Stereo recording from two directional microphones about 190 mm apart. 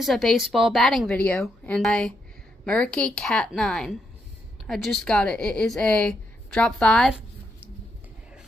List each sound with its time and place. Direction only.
0.0 s a woman's voice: centre (ahead or behind)